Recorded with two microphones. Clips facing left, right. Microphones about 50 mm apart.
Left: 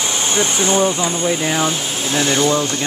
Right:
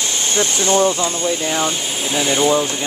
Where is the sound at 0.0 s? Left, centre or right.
Centre.